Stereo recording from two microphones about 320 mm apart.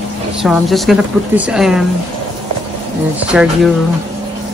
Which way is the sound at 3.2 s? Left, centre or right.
Centre.